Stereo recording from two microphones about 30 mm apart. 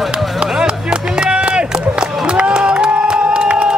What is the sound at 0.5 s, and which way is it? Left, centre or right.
Run, right.